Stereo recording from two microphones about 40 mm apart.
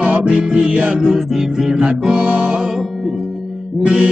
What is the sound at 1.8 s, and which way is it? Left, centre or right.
Music, right.